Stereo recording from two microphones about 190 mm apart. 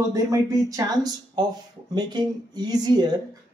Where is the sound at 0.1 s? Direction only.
20° right (ahead or behind).